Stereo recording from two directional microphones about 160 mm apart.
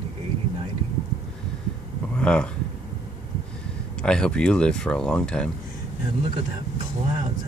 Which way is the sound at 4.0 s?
5° left (ahead or behind).